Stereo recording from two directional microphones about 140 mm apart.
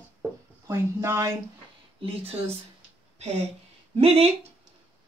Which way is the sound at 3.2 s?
50° right (ahead or behind).